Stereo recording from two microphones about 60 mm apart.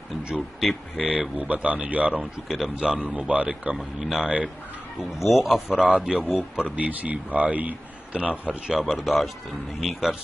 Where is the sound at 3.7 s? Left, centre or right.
Centre.